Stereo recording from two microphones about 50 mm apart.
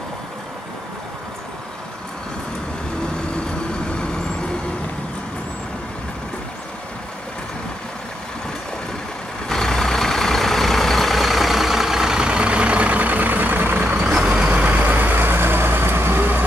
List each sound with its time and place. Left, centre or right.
9.5 s vehicle: centre; by 13.8 s right
14.0 s vehicle: centre
14.3 s vehicle: right